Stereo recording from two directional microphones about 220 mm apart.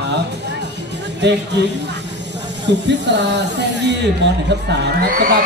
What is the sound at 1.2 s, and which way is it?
Music, 50° right (ahead or behind).